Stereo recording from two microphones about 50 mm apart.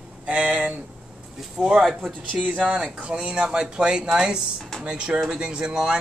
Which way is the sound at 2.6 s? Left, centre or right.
Centre.